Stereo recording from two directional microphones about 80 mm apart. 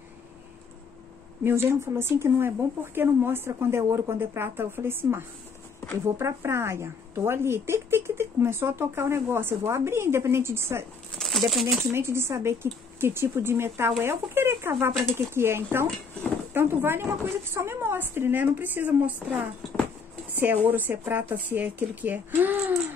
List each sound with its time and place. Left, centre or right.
1.4 s a woman's voice: right
11.1 s a sound: centre
11.9 s a woman's voice: right
20.3 s speech: right